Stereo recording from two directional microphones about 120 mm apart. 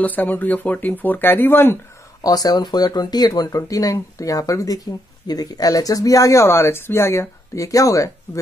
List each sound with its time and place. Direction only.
0.0 s speech: 15° left (ahead or behind)
2.2 s speech: 30° left (ahead or behind)